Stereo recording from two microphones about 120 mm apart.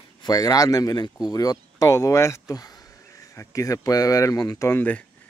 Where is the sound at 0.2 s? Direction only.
30° left (ahead or behind).